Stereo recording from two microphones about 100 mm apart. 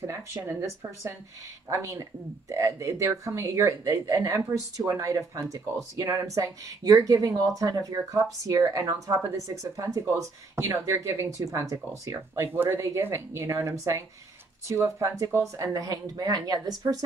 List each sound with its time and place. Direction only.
0.0 s speech: 30° right (ahead or behind)
1.7 s speech: 30° right (ahead or behind)